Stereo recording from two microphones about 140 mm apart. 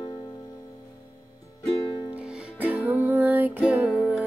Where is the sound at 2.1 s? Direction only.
5° right (ahead or behind).